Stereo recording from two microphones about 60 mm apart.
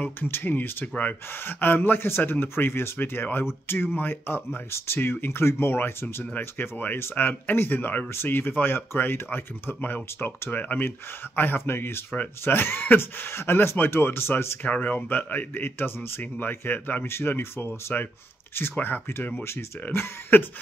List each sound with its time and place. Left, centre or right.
0.0 s speech: left